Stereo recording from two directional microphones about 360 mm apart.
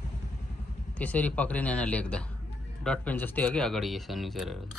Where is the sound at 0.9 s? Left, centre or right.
Centre.